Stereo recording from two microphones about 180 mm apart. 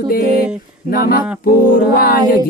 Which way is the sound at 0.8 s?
55° left (ahead or behind).